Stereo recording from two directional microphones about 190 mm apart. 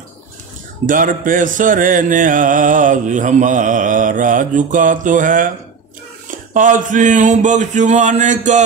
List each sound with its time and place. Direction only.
0.8 s music: 45° right (ahead or behind)
6.5 s speech: 45° right (ahead or behind)